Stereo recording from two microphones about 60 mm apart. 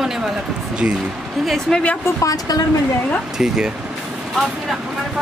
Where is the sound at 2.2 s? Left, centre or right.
Left.